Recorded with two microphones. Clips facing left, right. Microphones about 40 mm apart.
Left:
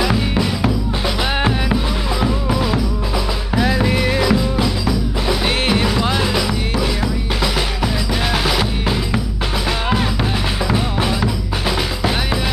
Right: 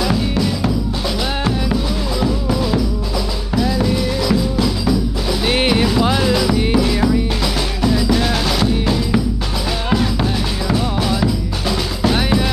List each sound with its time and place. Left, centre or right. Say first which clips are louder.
0.0 s music: even; centre
3.7 s music: left 1 dB; left
4.3 s music: even; centre
5.5 s music: right 6 dB; centre
7.8 s music: right 4 dB; centre
10.7 s music: right 2 dB; left